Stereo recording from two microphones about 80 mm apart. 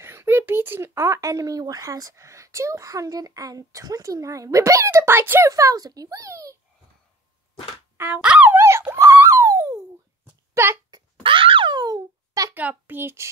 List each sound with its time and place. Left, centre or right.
0.0 s speech: right
5.5 s a child's voice: right
8.0 s dog: centre
8.5 s dog: right
9.1 s a sound: right
11.2 s a sound: right
12.5 s a child's voice: right